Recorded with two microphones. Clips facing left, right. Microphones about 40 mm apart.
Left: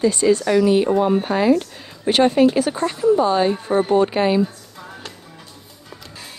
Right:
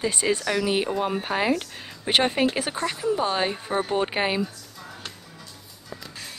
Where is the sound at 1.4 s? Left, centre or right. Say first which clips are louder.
Left 7 dB; right.